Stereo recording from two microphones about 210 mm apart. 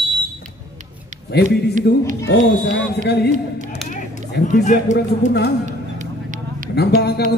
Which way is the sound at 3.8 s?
35° left (ahead or behind).